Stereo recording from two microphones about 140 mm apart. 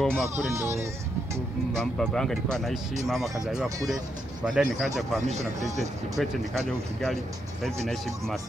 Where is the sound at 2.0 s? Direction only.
5° left (ahead or behind).